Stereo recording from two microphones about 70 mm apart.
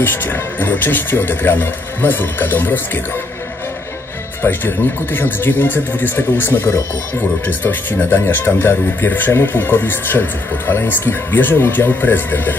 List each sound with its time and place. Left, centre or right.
0.0 s speech: left
4.4 s speech: left